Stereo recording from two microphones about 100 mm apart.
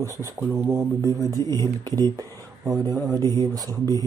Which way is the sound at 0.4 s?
30° right (ahead or behind).